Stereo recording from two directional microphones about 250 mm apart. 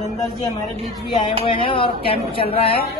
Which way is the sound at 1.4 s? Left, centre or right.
Left.